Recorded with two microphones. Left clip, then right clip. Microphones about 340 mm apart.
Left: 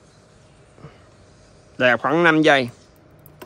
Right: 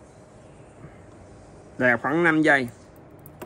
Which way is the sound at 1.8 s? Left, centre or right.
Centre.